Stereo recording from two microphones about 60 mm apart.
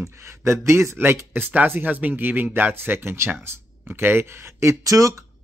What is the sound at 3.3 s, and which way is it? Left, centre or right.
Speech, right.